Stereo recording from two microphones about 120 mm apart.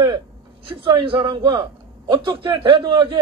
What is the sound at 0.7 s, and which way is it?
A man's voice, 45° right (ahead or behind).